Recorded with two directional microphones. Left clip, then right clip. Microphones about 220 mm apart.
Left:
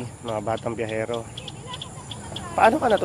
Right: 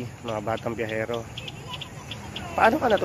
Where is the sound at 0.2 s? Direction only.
10° left (ahead or behind).